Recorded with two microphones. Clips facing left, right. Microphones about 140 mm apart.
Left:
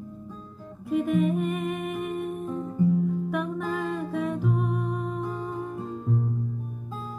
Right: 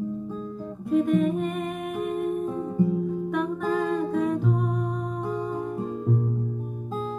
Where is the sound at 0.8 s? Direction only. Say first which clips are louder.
Right 2 dB; centre (ahead or behind).